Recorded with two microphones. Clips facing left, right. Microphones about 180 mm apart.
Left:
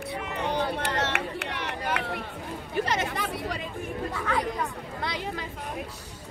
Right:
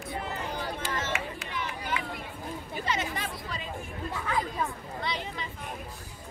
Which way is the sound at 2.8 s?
70° left (ahead or behind).